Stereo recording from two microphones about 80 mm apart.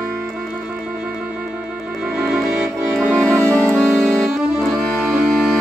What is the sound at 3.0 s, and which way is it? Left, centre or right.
Music, centre.